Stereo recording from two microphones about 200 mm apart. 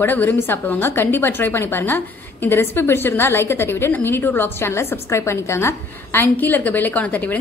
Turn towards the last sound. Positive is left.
turn(degrees=10)  # may be behind; listen again after turning